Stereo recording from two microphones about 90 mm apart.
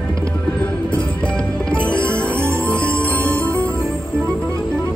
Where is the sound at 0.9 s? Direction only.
15° left (ahead or behind).